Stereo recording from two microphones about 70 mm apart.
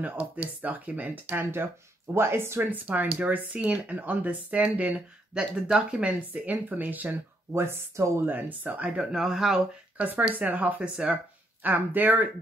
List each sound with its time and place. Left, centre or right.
0.0 s speech: right
2.7 s speech: right
7.5 s speech: right
8.3 s speech: right; by 9.6 s centre
9.9 s speech: right
11.6 s speech: right